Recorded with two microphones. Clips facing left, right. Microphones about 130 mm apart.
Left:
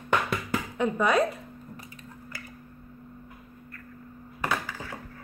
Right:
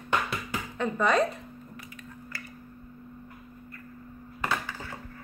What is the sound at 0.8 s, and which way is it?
Speech, 5° left (ahead or behind).